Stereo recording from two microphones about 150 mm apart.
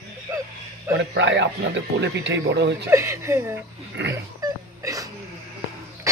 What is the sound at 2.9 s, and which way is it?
Speech, 20° right (ahead or behind).